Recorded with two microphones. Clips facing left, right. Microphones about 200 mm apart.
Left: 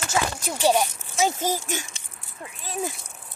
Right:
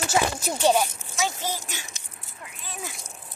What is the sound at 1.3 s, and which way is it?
Speech, 45° left (ahead or behind).